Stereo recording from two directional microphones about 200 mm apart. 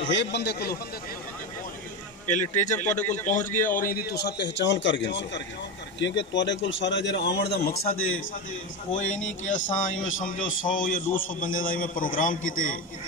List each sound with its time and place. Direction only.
0.0 s speech: 65° left (ahead or behind)
2.2 s speech: 40° left (ahead or behind)
9.4 s a man's voice: 40° left (ahead or behind)